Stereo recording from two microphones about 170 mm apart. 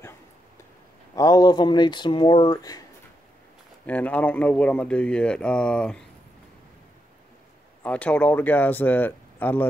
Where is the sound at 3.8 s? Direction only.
10° left (ahead or behind).